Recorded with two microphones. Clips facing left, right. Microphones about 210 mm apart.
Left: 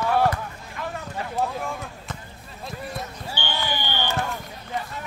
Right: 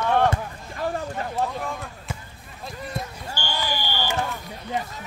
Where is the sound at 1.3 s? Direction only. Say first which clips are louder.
Left 2 dB; centre (ahead or behind).